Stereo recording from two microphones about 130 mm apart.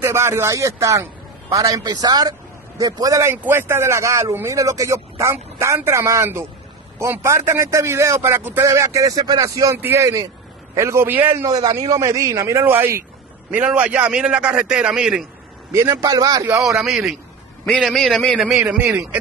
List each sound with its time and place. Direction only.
0.0 s a man's voice: 20° right (ahead or behind)
11.4 s a man's voice: 30° right (ahead or behind); by 15.2 s 5° right (ahead or behind)
15.7 s a man's voice: 20° right (ahead or behind)
16.8 s a man's voice: centre (ahead or behind)
18.5 s a man's voice: 10° right (ahead or behind)